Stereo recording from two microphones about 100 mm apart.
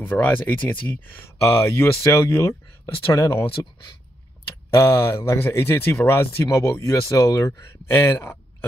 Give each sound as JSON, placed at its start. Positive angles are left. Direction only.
{"t": 0.0, "sound": "speech", "side_deg": 20}
{"t": 1.4, "sound": "speech", "side_deg": 25}
{"t": 4.6, "sound": "speech", "side_deg": 25}